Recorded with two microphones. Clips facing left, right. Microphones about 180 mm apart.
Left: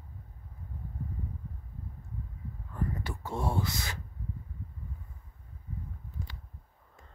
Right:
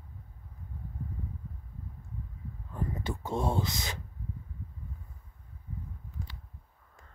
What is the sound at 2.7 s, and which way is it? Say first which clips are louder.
Speech: right 1 dB; 20° right (ahead or behind).